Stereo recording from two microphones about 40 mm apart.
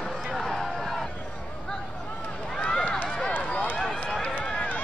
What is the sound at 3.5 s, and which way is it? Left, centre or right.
Run, left.